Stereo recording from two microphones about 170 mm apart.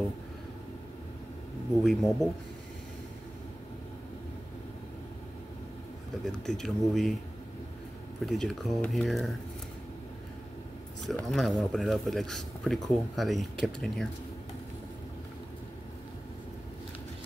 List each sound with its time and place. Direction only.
1.8 s speech: centre (ahead or behind)
6.2 s speech: centre (ahead or behind)
8.3 s speech: centre (ahead or behind)
11.2 s speech: centre (ahead or behind)